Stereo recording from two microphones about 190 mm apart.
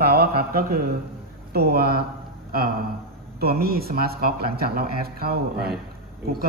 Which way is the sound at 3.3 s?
55° right (ahead or behind).